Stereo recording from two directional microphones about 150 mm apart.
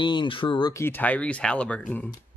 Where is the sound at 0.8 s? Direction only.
10° left (ahead or behind).